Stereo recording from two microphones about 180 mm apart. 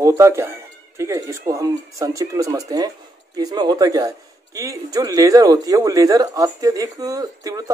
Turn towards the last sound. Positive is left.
turn(degrees=-20)  # may be behind; listen again after turning